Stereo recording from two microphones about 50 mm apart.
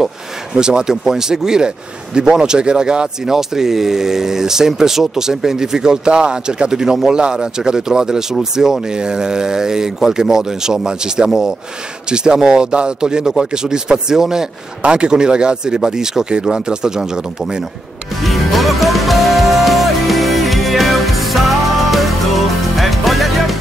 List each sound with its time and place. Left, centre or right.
0.6 s speech: centre
18.2 s music: centre